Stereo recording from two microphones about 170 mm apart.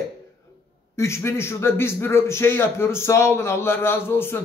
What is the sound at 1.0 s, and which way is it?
A man's voice, 15° left (ahead or behind).